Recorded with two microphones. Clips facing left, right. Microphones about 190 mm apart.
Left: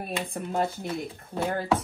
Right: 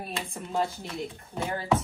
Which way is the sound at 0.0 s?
55° left (ahead or behind).